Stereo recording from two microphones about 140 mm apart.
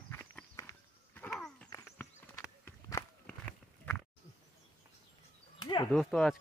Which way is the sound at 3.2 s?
10° left (ahead or behind).